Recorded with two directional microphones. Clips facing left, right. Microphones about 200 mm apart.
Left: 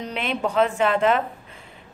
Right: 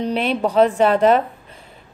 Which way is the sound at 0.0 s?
35° right (ahead or behind).